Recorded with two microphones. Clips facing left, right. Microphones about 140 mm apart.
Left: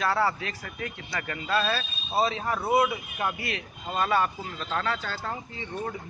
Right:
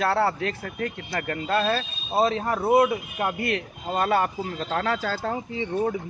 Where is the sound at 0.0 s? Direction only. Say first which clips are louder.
Right 3 dB; 60° right (ahead or behind); by 3.3 s 40° right (ahead or behind).